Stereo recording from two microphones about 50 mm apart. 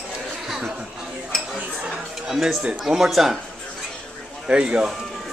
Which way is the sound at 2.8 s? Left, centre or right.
Centre.